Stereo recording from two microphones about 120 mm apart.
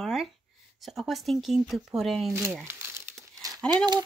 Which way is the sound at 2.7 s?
20° right (ahead or behind).